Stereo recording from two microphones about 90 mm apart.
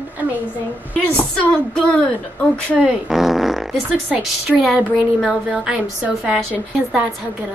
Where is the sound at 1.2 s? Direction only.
10° left (ahead or behind).